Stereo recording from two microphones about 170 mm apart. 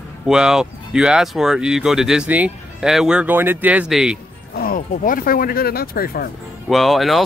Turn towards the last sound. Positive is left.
turn(degrees=0)  # may be behind; listen again after turning